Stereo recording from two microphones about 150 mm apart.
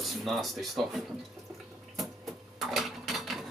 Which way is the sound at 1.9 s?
Centre (ahead or behind).